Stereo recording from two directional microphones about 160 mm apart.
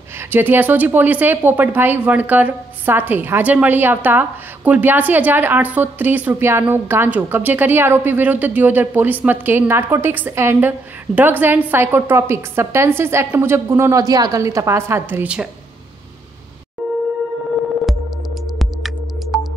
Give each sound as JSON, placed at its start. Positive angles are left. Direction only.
{"t": 0.3, "sound": "speech", "side_deg": -10}